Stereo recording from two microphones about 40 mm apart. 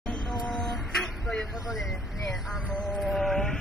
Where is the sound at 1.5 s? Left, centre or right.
Centre.